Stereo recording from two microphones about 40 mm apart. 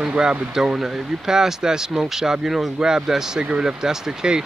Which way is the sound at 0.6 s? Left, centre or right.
Centre.